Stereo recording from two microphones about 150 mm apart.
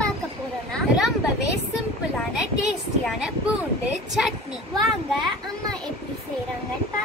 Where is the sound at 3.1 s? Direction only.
5° right (ahead or behind).